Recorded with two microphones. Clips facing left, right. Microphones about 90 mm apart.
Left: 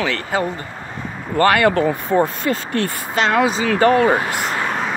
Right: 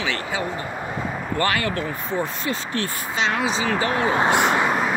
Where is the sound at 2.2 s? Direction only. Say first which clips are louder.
Left 6 dB; 45° left (ahead or behind).